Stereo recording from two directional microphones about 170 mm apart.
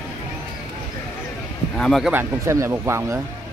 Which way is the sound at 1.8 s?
Centre (ahead or behind).